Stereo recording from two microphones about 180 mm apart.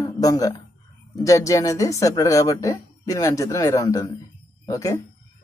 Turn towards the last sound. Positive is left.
turn(degrees=20)  # may be behind; listen again after turning